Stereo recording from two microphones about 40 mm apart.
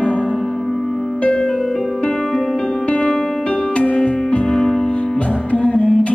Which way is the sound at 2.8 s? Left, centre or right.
Left.